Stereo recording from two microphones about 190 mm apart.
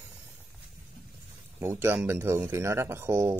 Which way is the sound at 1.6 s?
15° right (ahead or behind).